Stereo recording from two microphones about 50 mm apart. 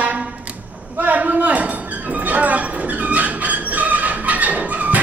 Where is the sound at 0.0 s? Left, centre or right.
Right.